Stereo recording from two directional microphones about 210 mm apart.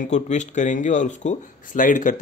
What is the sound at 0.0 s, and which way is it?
Speech, 35° left (ahead or behind).